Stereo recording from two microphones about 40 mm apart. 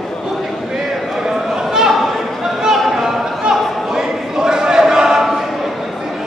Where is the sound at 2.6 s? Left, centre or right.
Centre.